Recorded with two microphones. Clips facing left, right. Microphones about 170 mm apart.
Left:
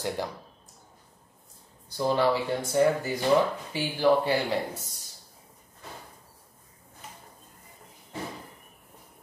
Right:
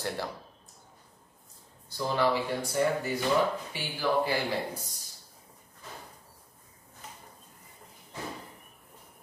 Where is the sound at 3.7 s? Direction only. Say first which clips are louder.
Left 7 dB; 30° left (ahead or behind).